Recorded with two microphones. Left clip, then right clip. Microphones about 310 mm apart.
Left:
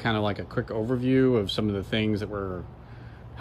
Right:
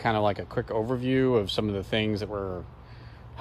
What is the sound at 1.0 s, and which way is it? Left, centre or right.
Speech, centre.